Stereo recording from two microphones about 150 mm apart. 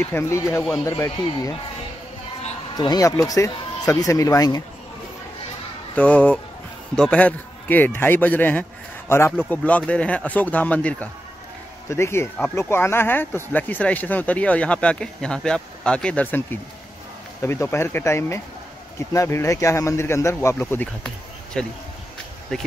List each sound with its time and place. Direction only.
0.0 s speech: 15° left (ahead or behind)
2.7 s speech: 25° left (ahead or behind)
5.9 s speech: 10° left (ahead or behind)